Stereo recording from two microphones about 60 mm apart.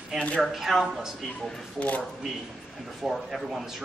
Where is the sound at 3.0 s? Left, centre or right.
Centre.